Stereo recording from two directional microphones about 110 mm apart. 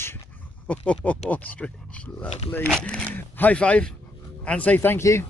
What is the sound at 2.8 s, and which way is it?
Speech, 10° left (ahead or behind).